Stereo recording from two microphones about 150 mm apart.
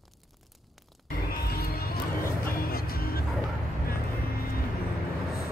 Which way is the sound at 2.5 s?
80° left.